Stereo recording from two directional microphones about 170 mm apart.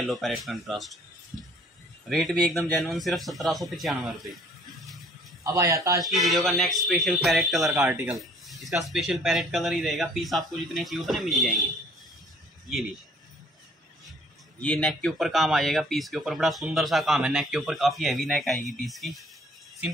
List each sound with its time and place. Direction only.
0.0 s speech: centre (ahead or behind)
2.0 s speech: 5° left (ahead or behind)
5.4 s speech: 20° right (ahead or behind)
6.0 s speech: centre (ahead or behind)
14.6 s speech: 5° left (ahead or behind)